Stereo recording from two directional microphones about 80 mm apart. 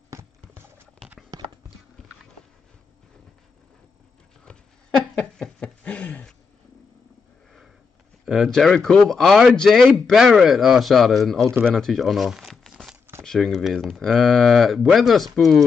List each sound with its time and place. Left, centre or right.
1.3 s horse: right
4.5 s dog: centre
5.1 s a sound: centre
8.3 s speech: centre